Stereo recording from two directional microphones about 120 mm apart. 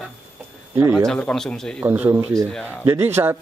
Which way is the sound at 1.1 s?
5° left (ahead or behind).